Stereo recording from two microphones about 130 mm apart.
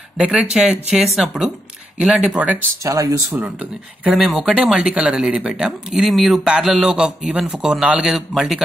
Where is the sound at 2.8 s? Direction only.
25° right (ahead or behind).